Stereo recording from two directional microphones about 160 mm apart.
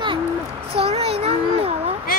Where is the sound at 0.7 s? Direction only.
40° right (ahead or behind).